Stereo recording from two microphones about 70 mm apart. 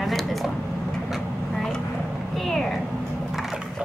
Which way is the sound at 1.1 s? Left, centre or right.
Centre.